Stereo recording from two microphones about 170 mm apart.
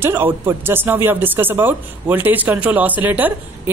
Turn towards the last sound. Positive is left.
turn(degrees=-10)  # may be behind; listen again after turning